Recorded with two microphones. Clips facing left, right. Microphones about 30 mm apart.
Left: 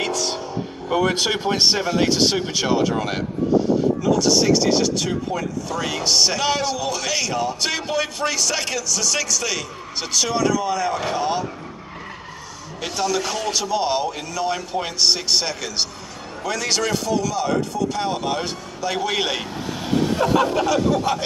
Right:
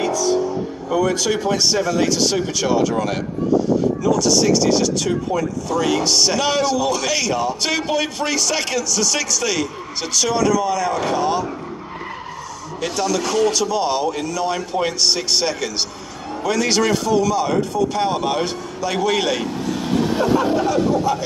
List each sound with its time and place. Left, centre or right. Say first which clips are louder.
0.0 s vehicle: right 6 dB; left
0.8 s speech: right 1 dB; left; by 11.4 s centre
12.8 s speech: right 2 dB; centre
18.8 s vehicle: right 3 dB; centre
20.5 s speech: right 1 dB; left